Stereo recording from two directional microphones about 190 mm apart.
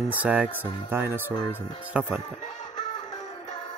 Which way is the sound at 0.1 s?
10° right (ahead or behind).